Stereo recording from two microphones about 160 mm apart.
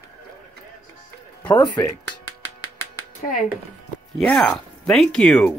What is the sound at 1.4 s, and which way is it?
Speech, 30° left (ahead or behind).